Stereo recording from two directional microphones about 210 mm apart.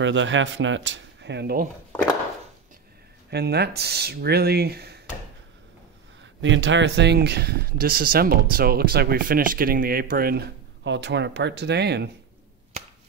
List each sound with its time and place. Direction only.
0.0 s speech: 60° right (ahead or behind)
3.3 s speech: 50° right (ahead or behind)
6.4 s speech: 60° right (ahead or behind)